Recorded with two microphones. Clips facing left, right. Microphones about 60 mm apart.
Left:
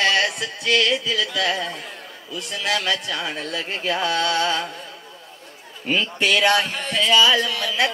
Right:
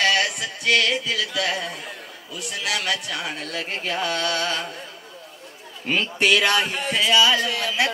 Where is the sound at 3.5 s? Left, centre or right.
Left.